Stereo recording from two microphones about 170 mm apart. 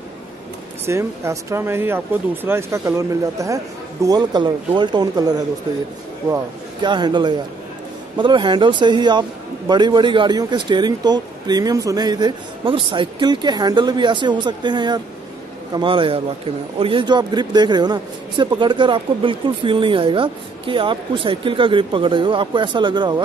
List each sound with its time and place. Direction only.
0.8 s a man's voice: 15° right (ahead or behind)